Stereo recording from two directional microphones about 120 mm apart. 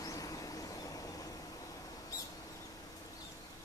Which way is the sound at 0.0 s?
30° left (ahead or behind).